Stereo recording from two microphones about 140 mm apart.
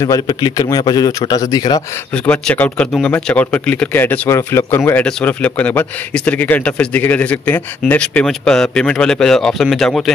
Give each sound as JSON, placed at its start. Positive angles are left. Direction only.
{"t": 0.0, "sound": "a man's voice", "side_deg": 25}
{"t": 2.1, "sound": "speech", "side_deg": 5}